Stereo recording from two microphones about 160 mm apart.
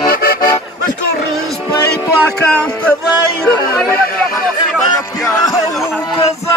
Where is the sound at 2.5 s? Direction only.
5° left (ahead or behind).